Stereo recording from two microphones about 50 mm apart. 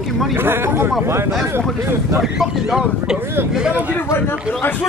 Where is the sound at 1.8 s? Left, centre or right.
Right.